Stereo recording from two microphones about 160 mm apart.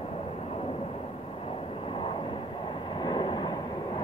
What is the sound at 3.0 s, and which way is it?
Vehicle, 30° left (ahead or behind).